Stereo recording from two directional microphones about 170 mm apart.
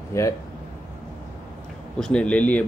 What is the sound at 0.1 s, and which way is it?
Speech, 15° left (ahead or behind).